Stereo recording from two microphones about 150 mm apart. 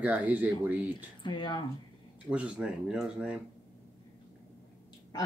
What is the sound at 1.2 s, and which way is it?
Speech, 30° left (ahead or behind).